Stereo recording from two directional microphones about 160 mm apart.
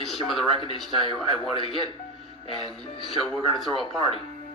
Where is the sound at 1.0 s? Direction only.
30° left (ahead or behind).